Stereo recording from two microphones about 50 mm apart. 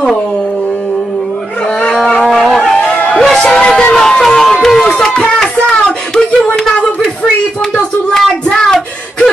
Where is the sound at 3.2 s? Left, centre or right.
Centre.